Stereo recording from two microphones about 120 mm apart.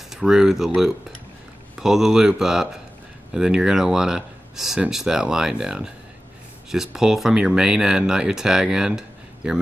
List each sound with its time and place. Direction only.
0.1 s speech: 5° right (ahead or behind)
1.8 s speech: 5° right (ahead or behind)